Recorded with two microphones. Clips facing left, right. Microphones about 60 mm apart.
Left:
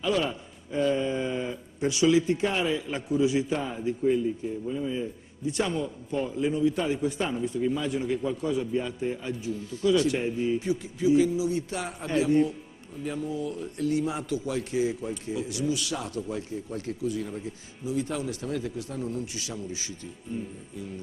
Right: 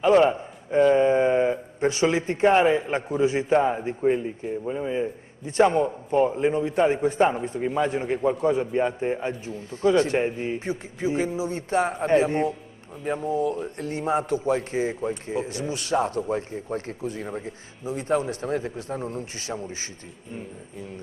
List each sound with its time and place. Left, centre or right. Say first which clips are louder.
0.0 s a man's voice: right 9 dB; right